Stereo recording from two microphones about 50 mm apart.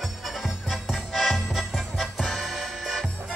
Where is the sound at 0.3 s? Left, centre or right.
Centre.